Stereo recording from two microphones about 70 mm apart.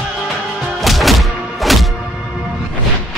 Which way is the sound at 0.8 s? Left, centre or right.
Centre.